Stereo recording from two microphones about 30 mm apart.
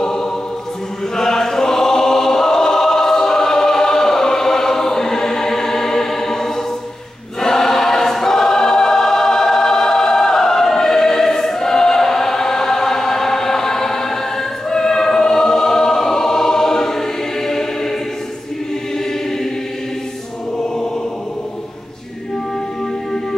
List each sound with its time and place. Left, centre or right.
1.1 s choir: centre
20.5 s choir: left